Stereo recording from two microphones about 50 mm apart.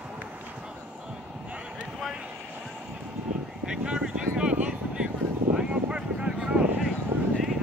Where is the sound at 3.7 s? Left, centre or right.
Centre.